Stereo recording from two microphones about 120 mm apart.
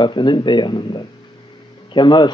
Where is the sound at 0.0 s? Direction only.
40° left (ahead or behind).